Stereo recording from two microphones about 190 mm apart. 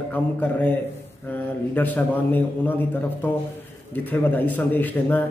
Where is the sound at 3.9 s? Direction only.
10° left (ahead or behind).